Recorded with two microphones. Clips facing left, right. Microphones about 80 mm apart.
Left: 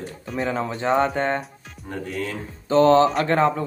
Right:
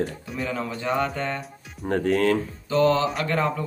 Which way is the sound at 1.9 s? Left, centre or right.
Right.